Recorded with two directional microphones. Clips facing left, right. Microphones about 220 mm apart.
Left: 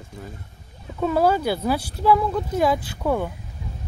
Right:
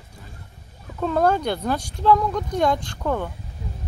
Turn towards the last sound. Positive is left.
turn(degrees=10)  # may be behind; listen again after turning